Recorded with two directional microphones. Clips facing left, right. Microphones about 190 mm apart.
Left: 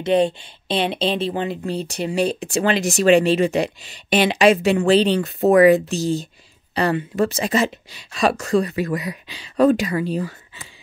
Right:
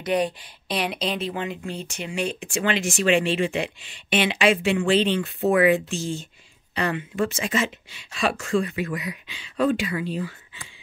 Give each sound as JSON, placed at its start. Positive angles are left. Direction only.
{"t": 0.0, "sound": "speech", "side_deg": 25}